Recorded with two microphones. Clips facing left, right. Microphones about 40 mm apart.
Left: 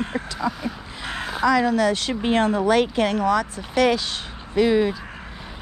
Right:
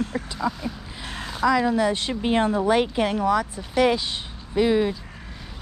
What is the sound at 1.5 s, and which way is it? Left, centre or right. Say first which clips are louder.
Speech: left 1 dB; centre.